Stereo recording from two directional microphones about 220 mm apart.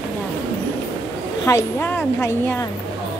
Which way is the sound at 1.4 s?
10° left (ahead or behind).